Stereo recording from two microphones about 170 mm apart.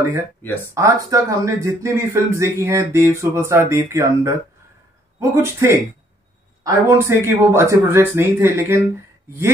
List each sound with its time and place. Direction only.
0.7 s speech: 20° right (ahead or behind)